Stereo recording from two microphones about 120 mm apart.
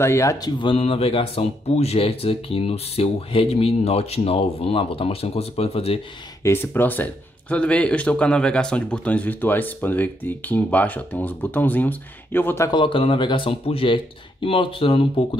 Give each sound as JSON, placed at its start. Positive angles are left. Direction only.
{"t": 0.0, "sound": "speech", "side_deg": 25}
{"t": 6.4, "sound": "speech", "side_deg": 20}
{"t": 12.6, "sound": "speech", "side_deg": 40}